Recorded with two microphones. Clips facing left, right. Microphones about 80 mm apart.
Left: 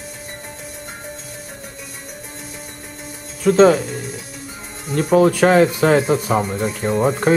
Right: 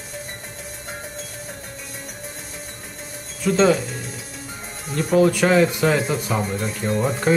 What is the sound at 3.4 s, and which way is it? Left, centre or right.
Speech, left.